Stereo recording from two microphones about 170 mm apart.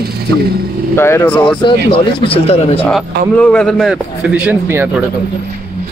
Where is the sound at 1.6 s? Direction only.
30° left (ahead or behind).